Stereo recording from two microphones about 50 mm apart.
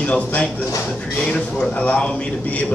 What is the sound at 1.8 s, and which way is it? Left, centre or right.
Speech, left.